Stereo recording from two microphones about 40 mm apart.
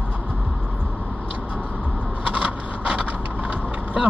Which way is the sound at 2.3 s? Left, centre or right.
Right.